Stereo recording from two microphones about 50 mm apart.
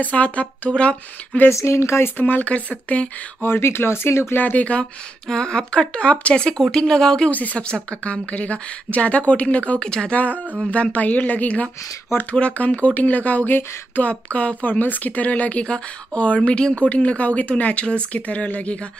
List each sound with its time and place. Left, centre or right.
0.0 s a woman's voice: left
1.5 s speech: left
2.1 s a woman's voice: left
3.4 s speech: left
4.4 s a woman's voice: left
5.3 s a woman's voice: centre
6.7 s speech: centre
7.2 s a woman's voice: left
9.8 s speech: centre
10.7 s a woman's voice: left